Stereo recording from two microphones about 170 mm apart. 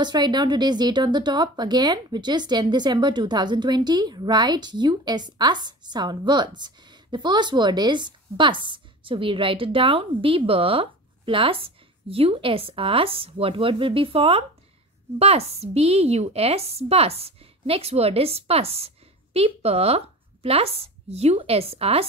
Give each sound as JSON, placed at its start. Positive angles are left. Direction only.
{"t": 0.0, "sound": "a woman's voice", "side_deg": -25}